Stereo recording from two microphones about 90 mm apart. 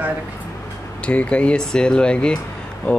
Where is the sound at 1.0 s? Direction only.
15° left (ahead or behind).